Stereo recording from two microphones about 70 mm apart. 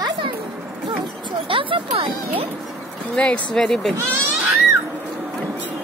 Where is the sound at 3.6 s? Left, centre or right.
Centre.